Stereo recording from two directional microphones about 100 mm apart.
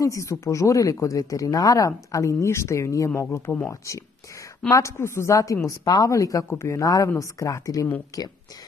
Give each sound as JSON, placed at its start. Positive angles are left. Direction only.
{"t": 0.0, "sound": "speech", "side_deg": 30}